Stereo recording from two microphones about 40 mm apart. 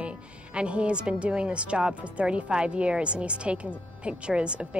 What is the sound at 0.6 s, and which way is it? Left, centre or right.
A woman's voice, right.